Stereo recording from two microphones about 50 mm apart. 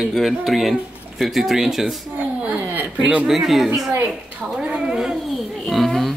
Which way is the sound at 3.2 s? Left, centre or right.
Centre.